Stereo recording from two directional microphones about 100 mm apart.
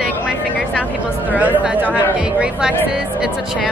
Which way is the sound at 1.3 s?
15° right (ahead or behind).